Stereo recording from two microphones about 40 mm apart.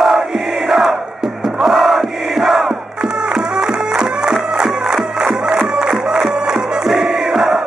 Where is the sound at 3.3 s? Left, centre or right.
Centre.